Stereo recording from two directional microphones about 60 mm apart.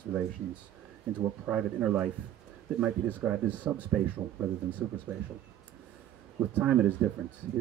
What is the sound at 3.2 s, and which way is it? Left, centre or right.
Speech, right.